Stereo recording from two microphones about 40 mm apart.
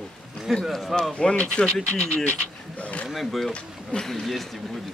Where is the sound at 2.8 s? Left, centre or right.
Left.